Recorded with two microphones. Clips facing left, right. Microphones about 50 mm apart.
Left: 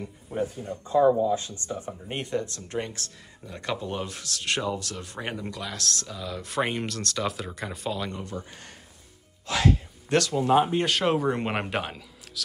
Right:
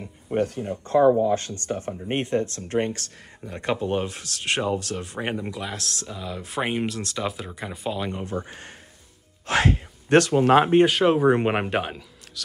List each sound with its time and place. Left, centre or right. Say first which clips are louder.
0.3 s speech: right 6 dB; right
2.0 s speech: right 6 dB; right; by 8.0 s centre
8.0 s speech: right 4 dB; right
8.4 s speech: right 6 dB; right
10.3 s speech: right 4 dB; right
10.9 s speech: right 4 dB; centre
11.2 s speech: right 7 dB; right